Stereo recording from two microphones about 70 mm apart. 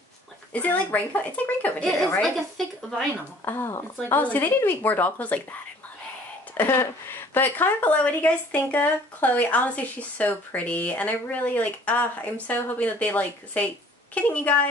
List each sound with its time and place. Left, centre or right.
0.5 s speech: left
2.2 s speech: centre
3.4 s speech: left
6.5 s speech: left